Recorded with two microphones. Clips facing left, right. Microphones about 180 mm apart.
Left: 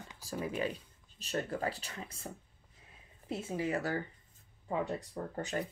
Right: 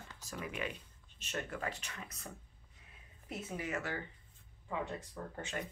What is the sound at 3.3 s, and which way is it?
Speech, 30° left (ahead or behind).